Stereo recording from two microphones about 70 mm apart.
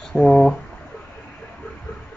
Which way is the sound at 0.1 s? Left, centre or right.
Centre.